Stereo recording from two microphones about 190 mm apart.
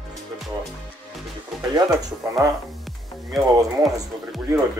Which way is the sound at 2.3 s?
20° right (ahead or behind).